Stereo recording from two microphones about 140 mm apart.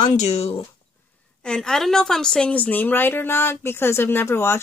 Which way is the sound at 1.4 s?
5° left (ahead or behind).